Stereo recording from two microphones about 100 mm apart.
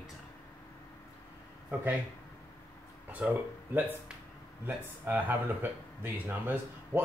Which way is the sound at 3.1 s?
15° right (ahead or behind).